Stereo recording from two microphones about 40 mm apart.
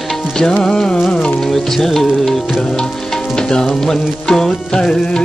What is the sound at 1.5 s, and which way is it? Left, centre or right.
Music, centre.